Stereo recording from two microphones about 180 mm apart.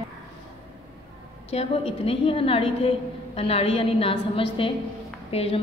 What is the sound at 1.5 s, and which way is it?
A woman's voice, 35° left (ahead or behind).